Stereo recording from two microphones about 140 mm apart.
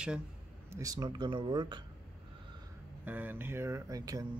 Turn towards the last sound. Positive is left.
turn(degrees=-25)  # may be behind; listen again after turning